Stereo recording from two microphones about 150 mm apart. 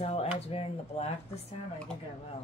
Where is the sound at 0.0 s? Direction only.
45° left (ahead or behind).